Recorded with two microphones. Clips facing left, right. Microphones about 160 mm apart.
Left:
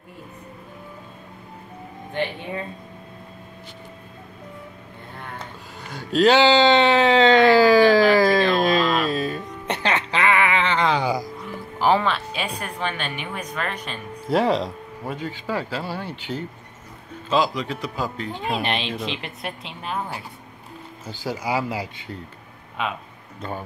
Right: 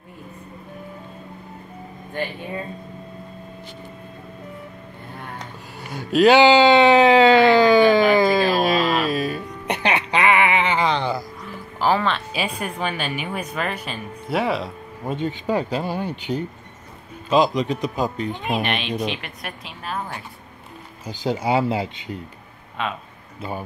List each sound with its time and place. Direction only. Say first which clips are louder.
5.9 s a sound: right 3 dB; 15° right (ahead or behind)
7.5 s a sound: even; centre (ahead or behind)
8.2 s music: even; 5° right (ahead or behind)
10.8 s a sound: even; 5° left (ahead or behind)
11.8 s music: left 1 dB; 15° left (ahead or behind)
12.3 s speech: right 3 dB; 5° right (ahead or behind)
15.0 s speech: right 5 dB; 20° right (ahead or behind)
18.6 s a woman's voice: right 2 dB; 25° left (ahead or behind)
21.0 s speech: right 5 dB; 15° right (ahead or behind)
22.8 s speech: even; 10° left (ahead or behind)